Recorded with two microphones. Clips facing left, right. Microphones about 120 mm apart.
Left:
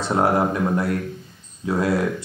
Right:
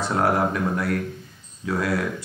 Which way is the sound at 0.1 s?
25° left (ahead or behind).